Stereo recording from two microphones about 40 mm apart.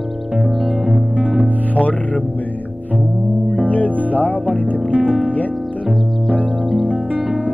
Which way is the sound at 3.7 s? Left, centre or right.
Left.